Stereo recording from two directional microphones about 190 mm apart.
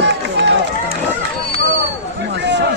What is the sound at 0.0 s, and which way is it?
Run, 65° right (ahead or behind).